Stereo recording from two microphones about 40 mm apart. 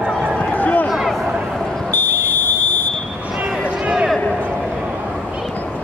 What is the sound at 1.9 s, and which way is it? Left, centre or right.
Smoke detector, left.